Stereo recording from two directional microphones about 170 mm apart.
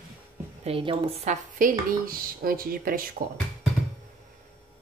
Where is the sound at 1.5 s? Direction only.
55° right (ahead or behind).